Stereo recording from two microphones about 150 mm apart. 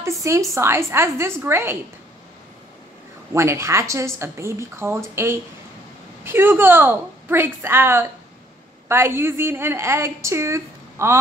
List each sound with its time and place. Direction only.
0.0 s a sound: 20° right (ahead or behind)
0.6 s a woman's voice: 15° right (ahead or behind)
3.3 s a woman's voice: 20° right (ahead or behind)